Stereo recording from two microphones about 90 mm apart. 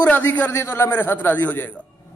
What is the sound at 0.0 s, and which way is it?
A man's voice, 20° left (ahead or behind).